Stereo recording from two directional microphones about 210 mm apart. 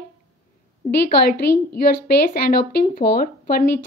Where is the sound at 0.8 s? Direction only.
45° left (ahead or behind).